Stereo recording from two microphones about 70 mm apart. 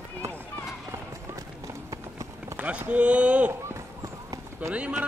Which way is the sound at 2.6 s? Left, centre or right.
Centre.